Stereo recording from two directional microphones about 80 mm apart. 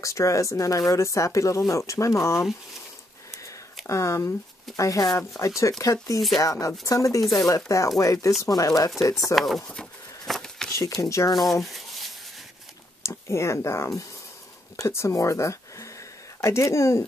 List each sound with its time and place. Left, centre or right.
0.0 s speech: left
3.3 s a sound: left
3.8 s speech: left
9.3 s speech: centre
9.7 s a sound: centre
11.0 s speech: left
11.6 s rub: centre
13.0 s speech: left